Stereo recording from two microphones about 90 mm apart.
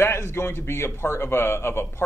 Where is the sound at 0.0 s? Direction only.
30° left (ahead or behind).